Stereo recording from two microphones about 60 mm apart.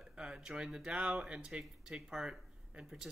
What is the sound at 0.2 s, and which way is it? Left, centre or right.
Speech, centre.